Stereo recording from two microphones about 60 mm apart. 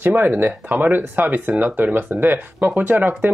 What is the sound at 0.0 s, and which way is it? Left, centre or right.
Speech, right.